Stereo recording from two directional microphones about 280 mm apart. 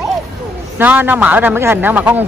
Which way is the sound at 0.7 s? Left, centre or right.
Centre.